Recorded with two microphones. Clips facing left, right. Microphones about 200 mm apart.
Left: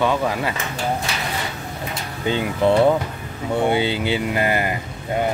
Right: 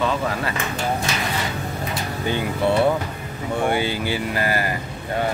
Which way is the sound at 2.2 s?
20° left (ahead or behind).